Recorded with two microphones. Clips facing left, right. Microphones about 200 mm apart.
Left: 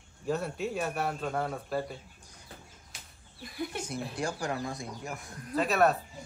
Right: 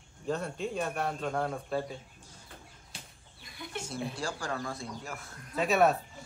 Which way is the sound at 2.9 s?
30° right (ahead or behind).